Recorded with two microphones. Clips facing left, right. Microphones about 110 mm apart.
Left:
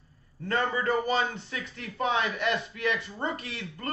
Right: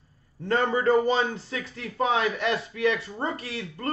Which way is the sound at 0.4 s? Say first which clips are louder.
Right 4 dB; 30° right (ahead or behind).